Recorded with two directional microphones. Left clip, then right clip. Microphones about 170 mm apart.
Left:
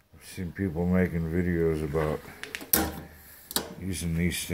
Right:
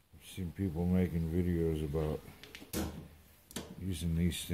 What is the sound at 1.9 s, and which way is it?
Speech, 20° left (ahead or behind).